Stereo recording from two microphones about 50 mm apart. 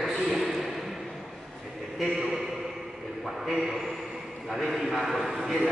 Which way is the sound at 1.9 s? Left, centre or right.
Centre.